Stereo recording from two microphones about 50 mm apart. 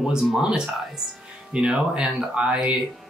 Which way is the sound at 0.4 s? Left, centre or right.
Centre.